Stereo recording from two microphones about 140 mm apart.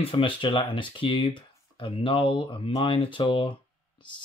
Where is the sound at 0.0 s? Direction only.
40° left (ahead or behind).